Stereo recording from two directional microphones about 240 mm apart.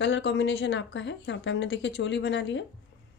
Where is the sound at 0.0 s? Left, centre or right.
Left.